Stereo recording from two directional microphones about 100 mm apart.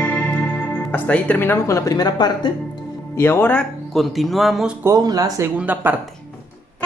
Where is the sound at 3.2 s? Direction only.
20° left (ahead or behind).